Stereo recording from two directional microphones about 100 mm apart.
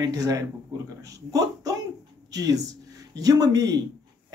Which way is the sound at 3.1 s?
40° right (ahead or behind).